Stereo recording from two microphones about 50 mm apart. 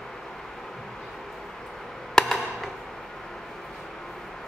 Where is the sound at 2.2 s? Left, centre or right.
Centre.